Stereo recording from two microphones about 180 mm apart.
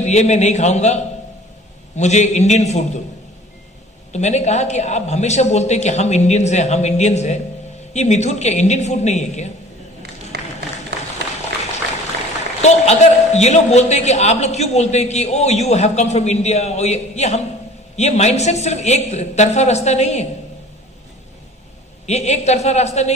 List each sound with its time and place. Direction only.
0.0 s a man's voice: 40° left (ahead or behind)
4.1 s a man's voice: 40° left (ahead or behind)
10.3 s music: 65° right (ahead or behind)
12.6 s a man's voice: 40° left (ahead or behind)
22.0 s a man's voice: 40° left (ahead or behind)